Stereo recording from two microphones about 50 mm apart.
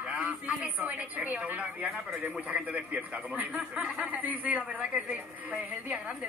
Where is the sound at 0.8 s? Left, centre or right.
Right.